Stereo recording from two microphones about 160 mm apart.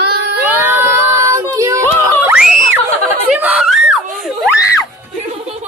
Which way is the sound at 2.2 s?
15° right (ahead or behind).